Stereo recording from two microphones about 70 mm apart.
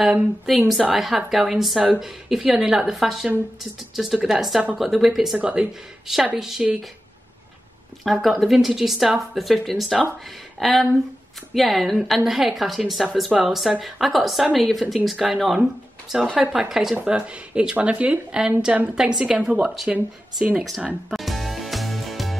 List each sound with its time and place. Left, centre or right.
0.0 s a woman's voice: centre
5.4 s a woman's voice: centre
8.0 s a woman's voice: centre
16.9 s a woman's voice: centre
18.9 s speech: centre
21.1 s music: centre